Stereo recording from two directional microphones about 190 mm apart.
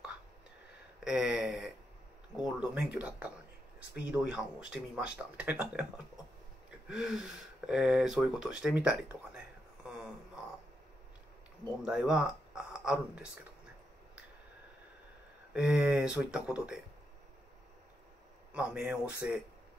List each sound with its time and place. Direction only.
1.0 s speech: 5° right (ahead or behind)
6.9 s speech: 5° right (ahead or behind)
11.8 s speech: 5° right (ahead or behind)
15.5 s speech: 5° right (ahead or behind)
18.5 s speech: 5° right (ahead or behind)